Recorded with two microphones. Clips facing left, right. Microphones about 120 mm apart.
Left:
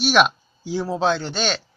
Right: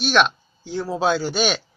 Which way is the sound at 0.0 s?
5° left (ahead or behind).